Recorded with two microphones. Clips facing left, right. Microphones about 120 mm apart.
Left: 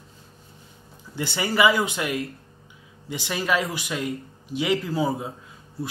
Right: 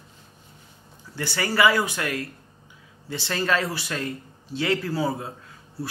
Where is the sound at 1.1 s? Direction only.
20° left (ahead or behind).